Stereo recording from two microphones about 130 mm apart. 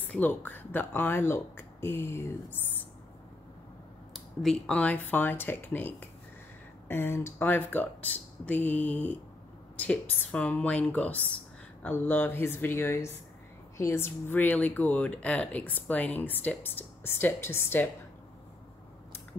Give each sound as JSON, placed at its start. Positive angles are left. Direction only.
{"t": 0.1, "sound": "speech", "side_deg": 15}
{"t": 4.1, "sound": "speech", "side_deg": 0}